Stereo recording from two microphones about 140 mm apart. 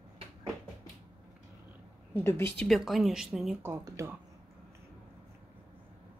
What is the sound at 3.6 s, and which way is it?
Speech, 20° right (ahead or behind).